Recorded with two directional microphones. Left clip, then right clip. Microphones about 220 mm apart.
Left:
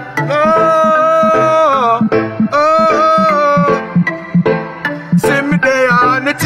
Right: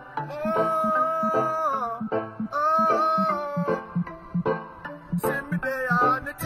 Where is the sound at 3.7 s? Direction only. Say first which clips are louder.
Left 15 dB; 40° right (ahead or behind).